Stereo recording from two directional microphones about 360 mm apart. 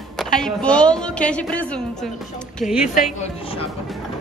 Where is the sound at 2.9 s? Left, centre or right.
Centre.